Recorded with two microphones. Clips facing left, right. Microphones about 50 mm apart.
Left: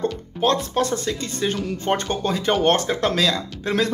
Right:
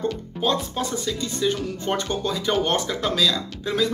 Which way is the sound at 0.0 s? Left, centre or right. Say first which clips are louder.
Left 3 dB; left.